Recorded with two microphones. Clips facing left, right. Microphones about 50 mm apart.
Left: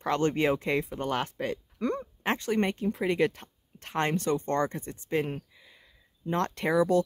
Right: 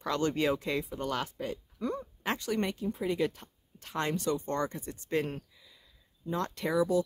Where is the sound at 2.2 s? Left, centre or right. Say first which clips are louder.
Left 4 dB; left.